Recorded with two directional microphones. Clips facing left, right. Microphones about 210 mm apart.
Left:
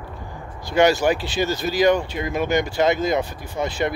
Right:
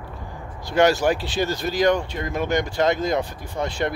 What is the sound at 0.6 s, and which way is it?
Speech, centre (ahead or behind).